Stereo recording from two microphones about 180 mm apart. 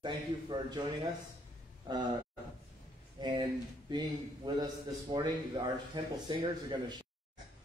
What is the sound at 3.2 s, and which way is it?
A man's voice, 25° right (ahead or behind).